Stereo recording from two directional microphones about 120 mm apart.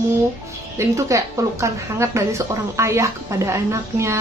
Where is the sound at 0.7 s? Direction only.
25° right (ahead or behind).